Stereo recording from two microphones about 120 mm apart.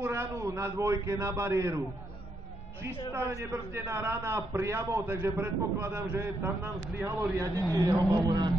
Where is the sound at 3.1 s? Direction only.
20° right (ahead or behind).